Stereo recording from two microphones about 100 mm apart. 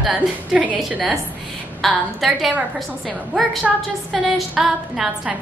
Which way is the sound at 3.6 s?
5° right (ahead or behind).